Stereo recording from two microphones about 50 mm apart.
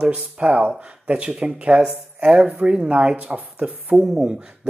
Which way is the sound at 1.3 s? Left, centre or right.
Centre.